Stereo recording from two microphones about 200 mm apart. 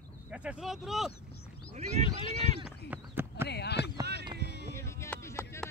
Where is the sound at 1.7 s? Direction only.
35° right (ahead or behind).